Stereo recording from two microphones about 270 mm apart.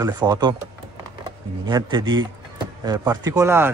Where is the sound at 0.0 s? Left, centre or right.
Centre.